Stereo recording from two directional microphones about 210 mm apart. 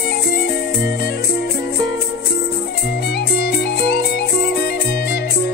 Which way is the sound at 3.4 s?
50° left (ahead or behind).